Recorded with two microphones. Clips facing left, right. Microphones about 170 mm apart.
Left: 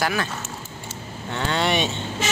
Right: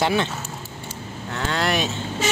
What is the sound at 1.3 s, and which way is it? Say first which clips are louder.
Speech: left 1 dB; centre (ahead or behind).